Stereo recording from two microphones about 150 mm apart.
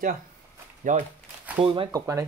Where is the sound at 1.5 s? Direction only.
35° right (ahead or behind).